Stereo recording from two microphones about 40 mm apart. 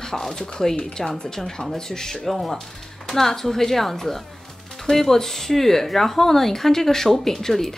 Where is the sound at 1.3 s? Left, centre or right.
Centre.